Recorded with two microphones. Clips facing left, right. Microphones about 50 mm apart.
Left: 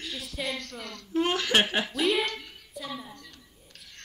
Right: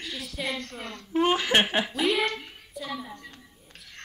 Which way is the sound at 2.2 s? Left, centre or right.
Right.